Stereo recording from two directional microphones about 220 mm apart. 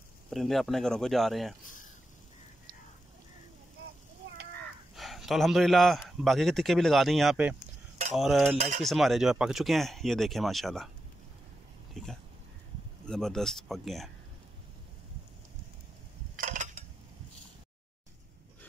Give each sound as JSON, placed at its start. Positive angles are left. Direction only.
{"t": 0.3, "sound": "a man's voice", "side_deg": 0}
{"t": 4.9, "sound": "a man's voice", "side_deg": 0}
{"t": 8.5, "sound": "cutlery", "side_deg": -35}
{"t": 8.8, "sound": "a man's voice", "side_deg": 0}
{"t": 13.0, "sound": "a man's voice", "side_deg": 5}
{"t": 16.3, "sound": "a sound", "side_deg": -35}